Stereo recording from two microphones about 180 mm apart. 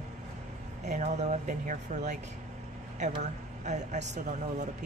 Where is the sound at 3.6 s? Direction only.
40° right (ahead or behind).